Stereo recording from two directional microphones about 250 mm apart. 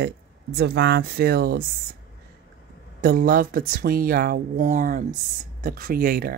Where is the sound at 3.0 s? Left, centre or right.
Right.